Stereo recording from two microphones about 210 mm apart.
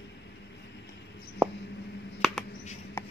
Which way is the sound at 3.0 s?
10° left (ahead or behind).